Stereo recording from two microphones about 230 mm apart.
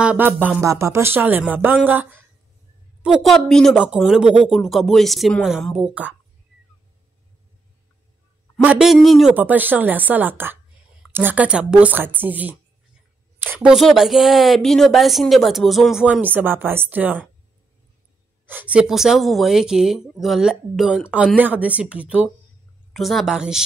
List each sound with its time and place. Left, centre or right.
0.0 s a woman's voice: centre
8.6 s a woman's voice: centre
18.5 s a woman's voice: centre